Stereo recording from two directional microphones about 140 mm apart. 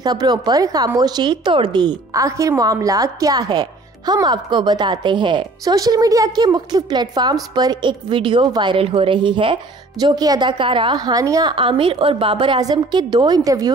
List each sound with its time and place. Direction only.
0.0 s a woman's voice: 30° right (ahead or behind)